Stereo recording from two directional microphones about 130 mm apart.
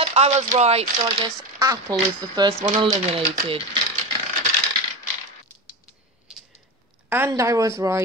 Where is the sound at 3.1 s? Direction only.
45° right (ahead or behind).